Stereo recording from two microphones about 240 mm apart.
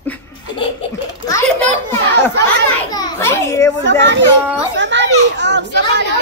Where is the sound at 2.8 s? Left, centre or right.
Centre.